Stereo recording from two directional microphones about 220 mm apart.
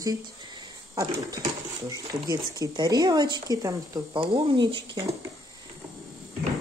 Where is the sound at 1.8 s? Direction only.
15° right (ahead or behind).